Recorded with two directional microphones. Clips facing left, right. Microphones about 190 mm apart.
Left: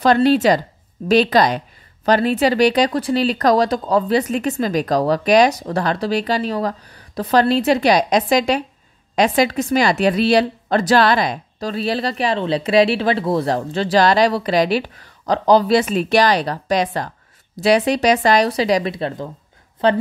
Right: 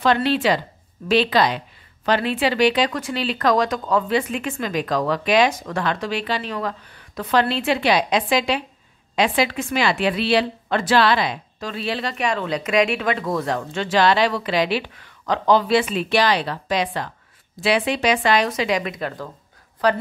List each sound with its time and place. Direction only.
0.0 s a woman's voice: 40° left (ahead or behind); by 20.0 s 25° left (ahead or behind)